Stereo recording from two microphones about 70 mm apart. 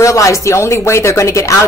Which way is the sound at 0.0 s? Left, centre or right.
Left.